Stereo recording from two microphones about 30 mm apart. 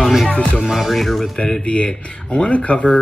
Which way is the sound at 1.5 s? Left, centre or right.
Left.